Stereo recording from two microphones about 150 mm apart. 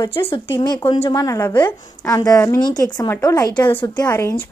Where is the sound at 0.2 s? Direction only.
35° left (ahead or behind).